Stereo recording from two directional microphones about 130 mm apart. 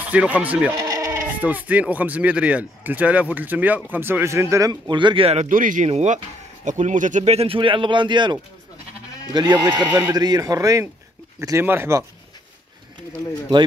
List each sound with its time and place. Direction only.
0.0 s speech: 10° right (ahead or behind)
0.7 s bleat: 25° right (ahead or behind)
1.2 s speech: 10° right (ahead or behind)
4.8 s speech: 35° right (ahead or behind)
5.5 s speech: 90° right
5.9 s speech: 55° right (ahead or behind); by 12.0 s 20° right (ahead or behind)